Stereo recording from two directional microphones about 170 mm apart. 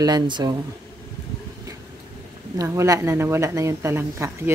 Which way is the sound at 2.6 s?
20° right (ahead or behind).